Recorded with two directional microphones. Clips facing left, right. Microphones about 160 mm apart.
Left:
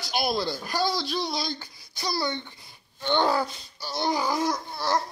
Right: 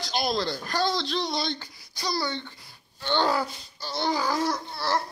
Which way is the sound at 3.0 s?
15° left (ahead or behind).